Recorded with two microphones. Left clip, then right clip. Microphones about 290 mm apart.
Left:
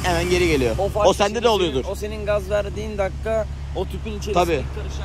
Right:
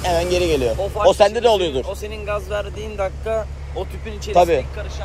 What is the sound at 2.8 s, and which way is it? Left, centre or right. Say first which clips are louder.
Speech: even; centre.